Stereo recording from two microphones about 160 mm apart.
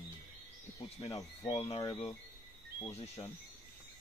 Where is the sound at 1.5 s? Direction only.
40° left (ahead or behind).